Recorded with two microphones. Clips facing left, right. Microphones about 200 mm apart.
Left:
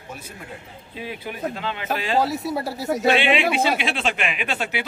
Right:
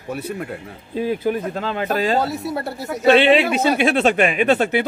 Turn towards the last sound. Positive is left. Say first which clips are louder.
# right 10 dB
turn(degrees=-45)  # may be behind; listen again after turning